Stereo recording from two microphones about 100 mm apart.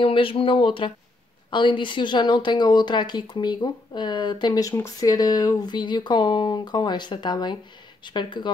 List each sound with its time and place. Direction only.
0.0 s speech: 60° left (ahead or behind); by 4.6 s 45° left (ahead or behind)
4.6 s speech: 30° left (ahead or behind); by 8.5 s 50° left (ahead or behind)